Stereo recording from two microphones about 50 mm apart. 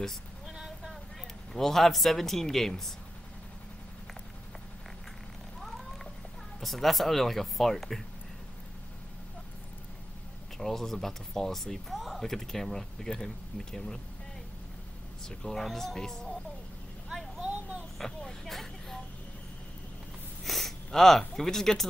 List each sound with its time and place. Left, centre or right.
0.5 s vehicle: centre
1.5 s speech: centre
5.6 s cat: centre
6.6 s speech: centre
10.6 s speech: centre
15.2 s speech: centre
17.4 s a sound: right
17.9 s vehicle: centre
20.4 s speech: centre